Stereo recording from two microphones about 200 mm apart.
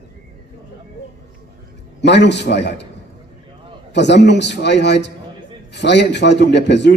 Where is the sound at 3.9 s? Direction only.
60° left (ahead or behind).